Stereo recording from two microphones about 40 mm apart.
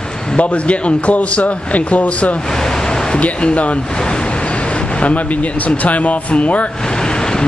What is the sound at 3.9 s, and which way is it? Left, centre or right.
Speech, left.